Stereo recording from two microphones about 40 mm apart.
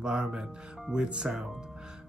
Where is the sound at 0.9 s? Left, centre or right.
Right.